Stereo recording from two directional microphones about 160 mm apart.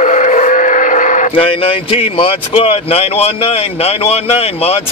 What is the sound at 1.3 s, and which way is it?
Speech, 35° left (ahead or behind).